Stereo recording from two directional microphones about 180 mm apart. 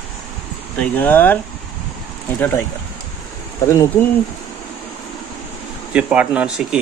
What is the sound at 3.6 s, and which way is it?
Speech, 15° left (ahead or behind).